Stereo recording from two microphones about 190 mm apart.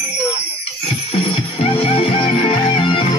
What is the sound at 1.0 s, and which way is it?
Music, 30° left (ahead or behind).